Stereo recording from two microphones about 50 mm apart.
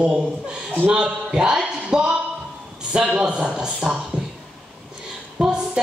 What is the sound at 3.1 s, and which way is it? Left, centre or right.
Speech, right.